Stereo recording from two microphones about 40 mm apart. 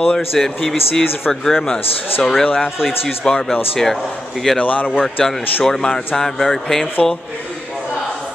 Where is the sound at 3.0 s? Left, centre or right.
Centre.